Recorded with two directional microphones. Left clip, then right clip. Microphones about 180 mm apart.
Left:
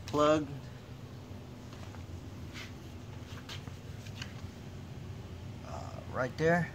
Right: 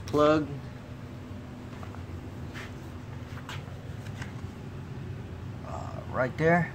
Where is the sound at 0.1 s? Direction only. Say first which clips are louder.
Right 4 dB; 5° left (ahead or behind).